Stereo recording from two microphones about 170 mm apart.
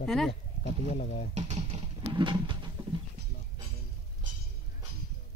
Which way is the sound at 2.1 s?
30° right (ahead or behind).